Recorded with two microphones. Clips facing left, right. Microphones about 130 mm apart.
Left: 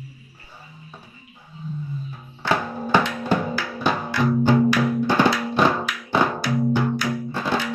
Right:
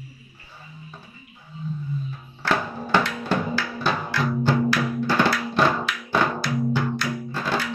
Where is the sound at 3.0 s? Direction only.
15° left (ahead or behind).